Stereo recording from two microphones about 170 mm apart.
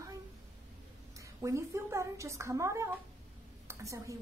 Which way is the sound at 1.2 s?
20° right (ahead or behind).